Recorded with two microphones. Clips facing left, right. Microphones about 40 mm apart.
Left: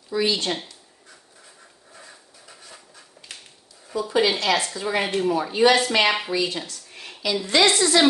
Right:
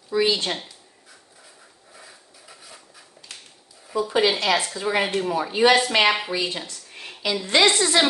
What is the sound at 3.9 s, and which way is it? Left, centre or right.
Speech, centre.